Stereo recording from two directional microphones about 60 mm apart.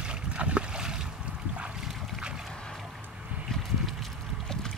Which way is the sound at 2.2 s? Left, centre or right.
Centre.